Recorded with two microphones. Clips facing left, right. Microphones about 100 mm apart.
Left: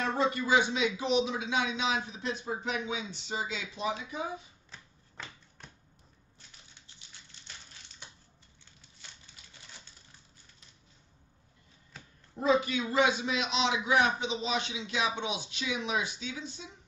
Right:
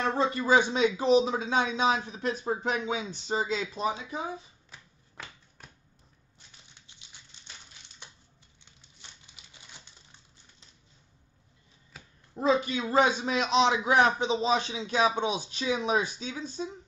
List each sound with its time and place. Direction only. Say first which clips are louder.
0.0 s a man's voice: right 2 dB; 30° right (ahead or behind)
4.6 s shuffling cards: even; 5° right (ahead or behind)
9.2 s typewriter: even; 15° right (ahead or behind)
12.4 s a man's voice: right 1 dB; 30° right (ahead or behind)